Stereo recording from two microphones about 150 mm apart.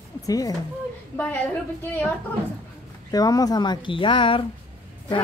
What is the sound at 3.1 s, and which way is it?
A woman's voice, 25° left (ahead or behind).